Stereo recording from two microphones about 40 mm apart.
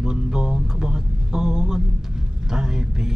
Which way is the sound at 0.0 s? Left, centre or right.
Centre.